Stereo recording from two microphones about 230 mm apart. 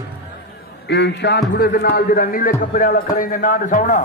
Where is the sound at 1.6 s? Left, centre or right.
Left.